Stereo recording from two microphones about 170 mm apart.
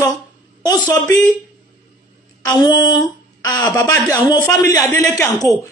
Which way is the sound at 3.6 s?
15° left (ahead or behind).